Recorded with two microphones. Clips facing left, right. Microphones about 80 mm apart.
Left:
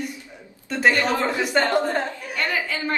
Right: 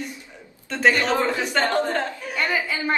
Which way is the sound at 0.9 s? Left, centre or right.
Right.